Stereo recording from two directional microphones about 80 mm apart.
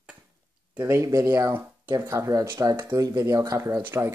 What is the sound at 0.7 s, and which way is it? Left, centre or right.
Speech, right.